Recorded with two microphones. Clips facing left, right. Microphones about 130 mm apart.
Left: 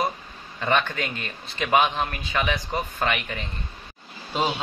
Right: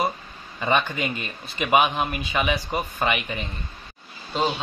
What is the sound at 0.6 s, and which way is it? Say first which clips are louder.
Speech: right 1 dB; 10° right (ahead or behind).